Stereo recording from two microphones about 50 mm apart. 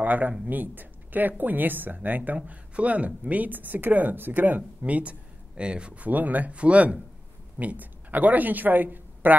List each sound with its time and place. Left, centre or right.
0.0 s a woman's voice: right